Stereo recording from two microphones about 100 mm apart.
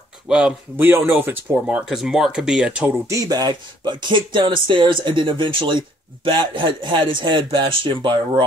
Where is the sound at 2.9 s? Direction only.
30° right (ahead or behind).